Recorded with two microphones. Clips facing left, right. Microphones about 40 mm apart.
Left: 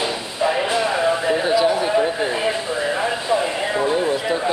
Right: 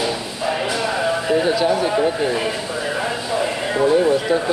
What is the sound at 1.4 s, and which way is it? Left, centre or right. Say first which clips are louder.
A man's voice: even; centre.